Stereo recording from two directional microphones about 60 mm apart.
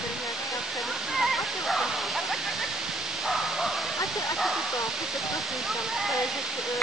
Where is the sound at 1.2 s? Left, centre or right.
Centre.